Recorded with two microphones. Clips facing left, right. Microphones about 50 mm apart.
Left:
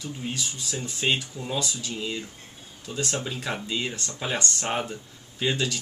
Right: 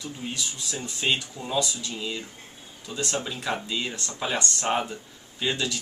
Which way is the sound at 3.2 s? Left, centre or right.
Centre.